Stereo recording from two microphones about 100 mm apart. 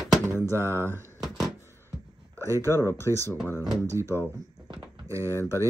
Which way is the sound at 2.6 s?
25° left (ahead or behind).